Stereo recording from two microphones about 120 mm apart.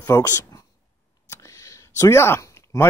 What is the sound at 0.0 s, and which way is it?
Speech, 25° left (ahead or behind).